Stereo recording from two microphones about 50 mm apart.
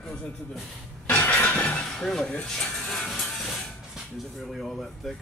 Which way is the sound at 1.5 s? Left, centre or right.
Left.